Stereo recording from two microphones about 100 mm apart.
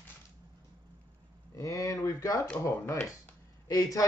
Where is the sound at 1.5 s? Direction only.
35° left (ahead or behind).